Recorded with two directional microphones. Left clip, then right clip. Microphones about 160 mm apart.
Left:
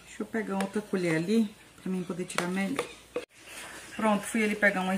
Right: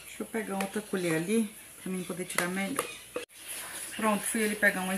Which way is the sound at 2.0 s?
15° left (ahead or behind).